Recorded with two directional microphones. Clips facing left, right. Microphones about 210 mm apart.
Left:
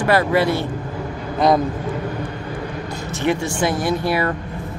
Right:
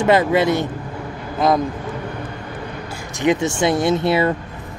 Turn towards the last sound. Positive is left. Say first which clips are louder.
# right 3 dB
turn(degrees=-25)  # may be behind; listen again after turning